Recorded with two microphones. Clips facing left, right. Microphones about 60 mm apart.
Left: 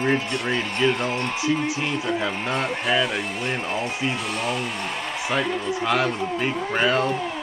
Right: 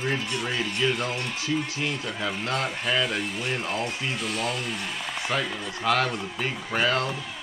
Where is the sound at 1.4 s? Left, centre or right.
Left.